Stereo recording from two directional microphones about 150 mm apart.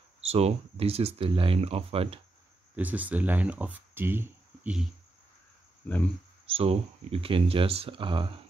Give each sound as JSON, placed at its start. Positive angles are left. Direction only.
{"t": 0.2, "sound": "speech", "side_deg": -45}
{"t": 2.7, "sound": "speech", "side_deg": -10}
{"t": 6.4, "sound": "speech", "side_deg": -40}